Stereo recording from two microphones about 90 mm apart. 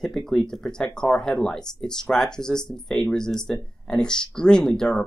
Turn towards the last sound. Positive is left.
turn(degrees=5)  # may be behind; listen again after turning